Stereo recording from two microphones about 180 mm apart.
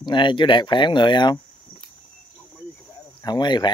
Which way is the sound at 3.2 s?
25° left (ahead or behind).